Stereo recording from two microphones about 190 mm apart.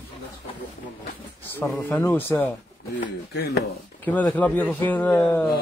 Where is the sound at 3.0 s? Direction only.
55° left (ahead or behind).